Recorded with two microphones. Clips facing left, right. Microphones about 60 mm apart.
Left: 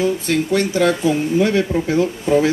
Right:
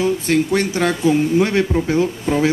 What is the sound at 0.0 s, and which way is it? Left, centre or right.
Speech, right.